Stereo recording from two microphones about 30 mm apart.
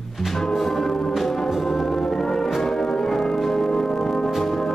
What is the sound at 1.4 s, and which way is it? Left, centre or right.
Brass instrument, centre.